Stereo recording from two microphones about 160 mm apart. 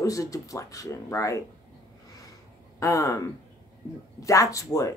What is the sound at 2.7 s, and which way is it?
Speech, 20° left (ahead or behind).